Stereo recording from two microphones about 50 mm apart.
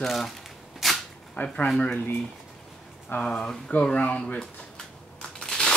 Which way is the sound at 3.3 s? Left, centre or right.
Centre.